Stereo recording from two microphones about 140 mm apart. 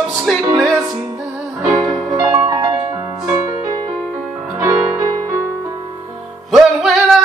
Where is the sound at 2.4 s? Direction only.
30° right (ahead or behind).